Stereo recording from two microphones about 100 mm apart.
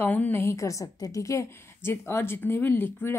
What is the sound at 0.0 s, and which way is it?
A woman's voice, 20° left (ahead or behind).